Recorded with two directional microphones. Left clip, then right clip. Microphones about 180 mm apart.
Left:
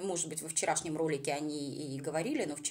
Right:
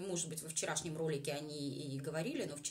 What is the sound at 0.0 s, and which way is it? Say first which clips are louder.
Speech: left 5 dB; 25° left (ahead or behind).